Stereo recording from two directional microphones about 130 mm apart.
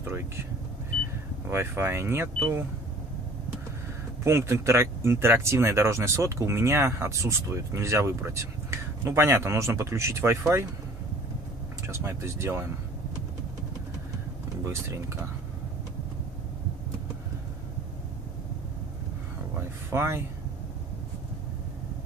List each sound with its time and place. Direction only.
0.0 s speech: 20° right (ahead or behind)
1.5 s speech: 20° right (ahead or behind)
4.2 s speech: 20° right (ahead or behind)
11.9 s speech: 20° right (ahead or behind)
14.6 s speech: 20° right (ahead or behind)
19.9 s speech: 20° right (ahead or behind)